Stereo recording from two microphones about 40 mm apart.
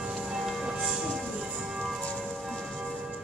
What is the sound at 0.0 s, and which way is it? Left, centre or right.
Church bell, centre.